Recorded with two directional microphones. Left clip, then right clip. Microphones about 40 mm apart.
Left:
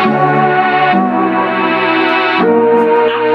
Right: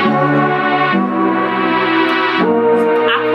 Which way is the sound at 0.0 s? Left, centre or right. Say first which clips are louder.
Left 3 dB; left.